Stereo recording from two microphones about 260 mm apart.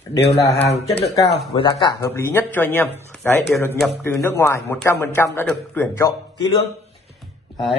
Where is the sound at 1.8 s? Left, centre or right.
Centre.